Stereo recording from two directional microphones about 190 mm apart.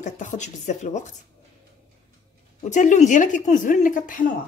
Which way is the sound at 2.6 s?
40° left (ahead or behind).